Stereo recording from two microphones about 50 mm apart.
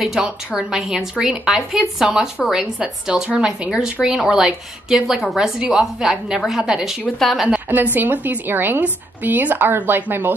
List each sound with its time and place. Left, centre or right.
0.1 s a woman's voice: centre
2.8 s a woman's voice: centre
7.2 s a woman's voice: centre
7.7 s a woman's voice: right